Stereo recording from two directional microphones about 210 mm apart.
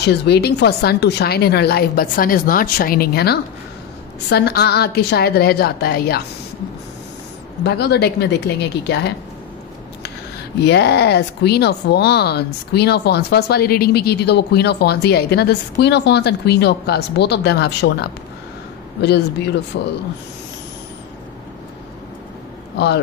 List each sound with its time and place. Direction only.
0.0 s speech: 50° left (ahead or behind)
7.6 s speech: 50° left (ahead or behind)
10.6 s speech: 50° left (ahead or behind)